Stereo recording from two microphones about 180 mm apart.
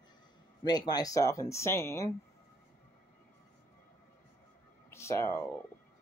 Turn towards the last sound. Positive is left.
turn(degrees=15)  # may be behind; listen again after turning